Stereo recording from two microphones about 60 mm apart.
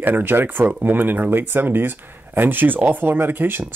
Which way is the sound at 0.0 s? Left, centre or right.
Right.